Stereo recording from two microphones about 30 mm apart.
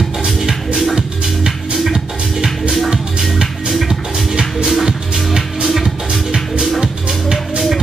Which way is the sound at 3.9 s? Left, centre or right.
Centre.